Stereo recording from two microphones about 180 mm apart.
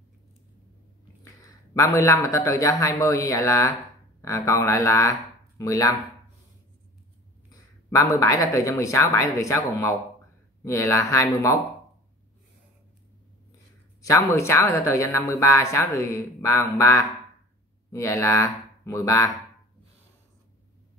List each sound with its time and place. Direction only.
1.2 s speech: 15° left (ahead or behind)
7.4 s speech: 15° left (ahead or behind)
14.0 s speech: 15° left (ahead or behind)